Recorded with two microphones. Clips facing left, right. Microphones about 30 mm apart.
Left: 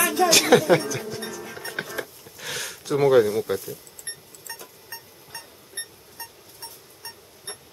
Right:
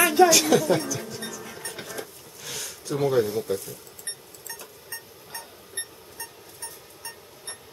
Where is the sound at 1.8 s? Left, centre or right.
Left.